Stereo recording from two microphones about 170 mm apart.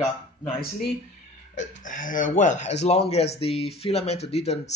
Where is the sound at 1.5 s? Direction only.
50° left (ahead or behind).